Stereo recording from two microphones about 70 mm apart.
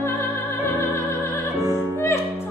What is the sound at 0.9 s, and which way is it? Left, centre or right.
Music, left.